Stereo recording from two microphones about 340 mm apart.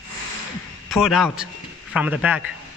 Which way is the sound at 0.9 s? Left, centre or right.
Centre.